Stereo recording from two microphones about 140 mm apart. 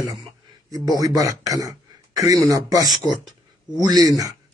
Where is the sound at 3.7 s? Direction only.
25° right (ahead or behind).